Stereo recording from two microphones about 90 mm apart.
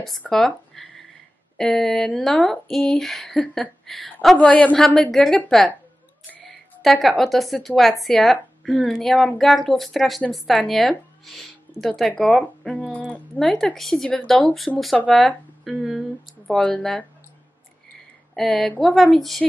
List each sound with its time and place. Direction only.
0.3 s a woman's voice: 5° left (ahead or behind)
4.5 s speech: 15° left (ahead or behind)
4.7 s a woman's voice: 5° left (ahead or behind)
12.1 s a woman's voice: 15° left (ahead or behind)
18.3 s a woman's voice: centre (ahead or behind)